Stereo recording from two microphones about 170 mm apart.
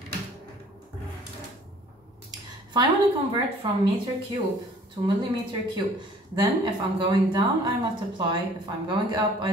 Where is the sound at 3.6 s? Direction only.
30° right (ahead or behind).